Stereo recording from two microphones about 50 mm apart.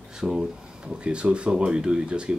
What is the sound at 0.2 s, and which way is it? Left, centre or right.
Speech, centre.